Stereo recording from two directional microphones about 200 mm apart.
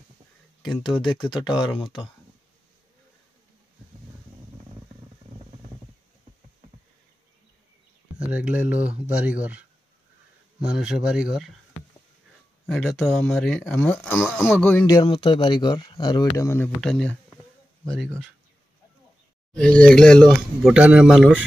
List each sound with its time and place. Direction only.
0.7 s speech: centre (ahead or behind)
0.9 s speech: 25° left (ahead or behind)
8.2 s speech: 5° right (ahead or behind)
10.6 s speech: 5° right (ahead or behind)
12.6 s speech: centre (ahead or behind)
14.9 s speech: 20° left (ahead or behind); by 17.2 s 5° left (ahead or behind)
19.5 s speech: 5° left (ahead or behind)